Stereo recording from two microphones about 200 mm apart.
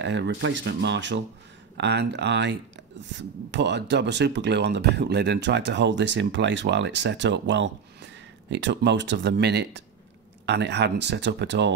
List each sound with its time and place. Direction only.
0.0 s speech: 60° right (ahead or behind)